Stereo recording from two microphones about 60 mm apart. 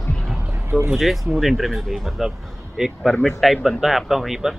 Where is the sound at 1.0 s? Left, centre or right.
Centre.